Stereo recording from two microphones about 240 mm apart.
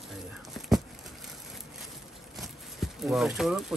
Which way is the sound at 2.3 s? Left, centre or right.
Centre.